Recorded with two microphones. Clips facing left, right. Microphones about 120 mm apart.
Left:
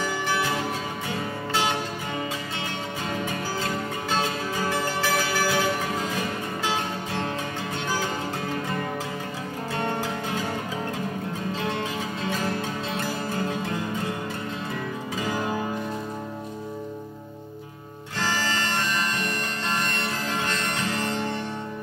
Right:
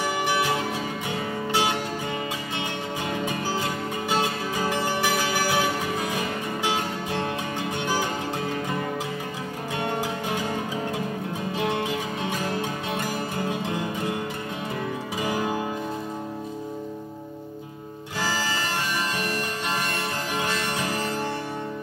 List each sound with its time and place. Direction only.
0.0 s music: 15° right (ahead or behind)
3.3 s music: 15° right (ahead or behind)
9.8 s music: 15° right (ahead or behind)
11.5 s music: 15° right (ahead or behind)
18.2 s bagpipes: 10° right (ahead or behind)
20.4 s music: 10° right (ahead or behind)